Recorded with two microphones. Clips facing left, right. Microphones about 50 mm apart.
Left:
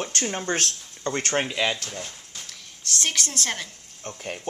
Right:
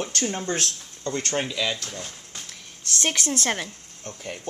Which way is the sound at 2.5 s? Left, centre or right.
Centre.